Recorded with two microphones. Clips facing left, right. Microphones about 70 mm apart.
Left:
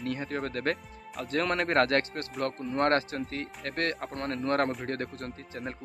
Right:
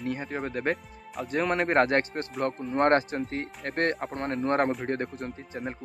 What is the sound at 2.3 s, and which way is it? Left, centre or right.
Speech, centre.